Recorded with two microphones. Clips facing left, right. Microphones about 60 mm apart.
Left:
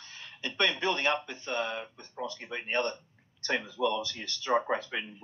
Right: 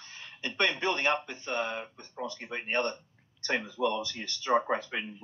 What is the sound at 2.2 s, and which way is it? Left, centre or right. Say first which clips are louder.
Speech: even; right.